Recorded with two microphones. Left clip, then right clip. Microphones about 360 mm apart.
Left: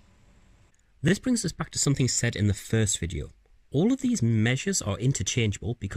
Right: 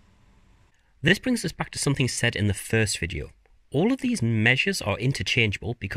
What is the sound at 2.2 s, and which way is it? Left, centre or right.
Speech, right.